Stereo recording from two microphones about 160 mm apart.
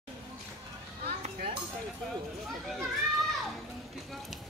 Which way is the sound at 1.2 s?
35° right (ahead or behind).